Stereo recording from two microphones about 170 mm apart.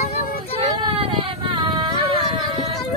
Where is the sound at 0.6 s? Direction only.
30° right (ahead or behind).